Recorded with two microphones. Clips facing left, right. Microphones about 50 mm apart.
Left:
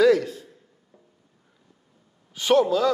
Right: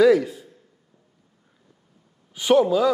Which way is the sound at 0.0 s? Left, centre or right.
Centre.